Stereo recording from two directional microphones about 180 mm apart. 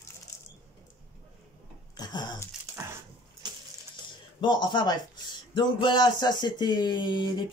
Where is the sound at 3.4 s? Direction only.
25° right (ahead or behind).